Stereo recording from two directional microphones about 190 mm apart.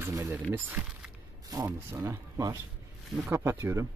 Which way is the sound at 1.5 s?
15° right (ahead or behind).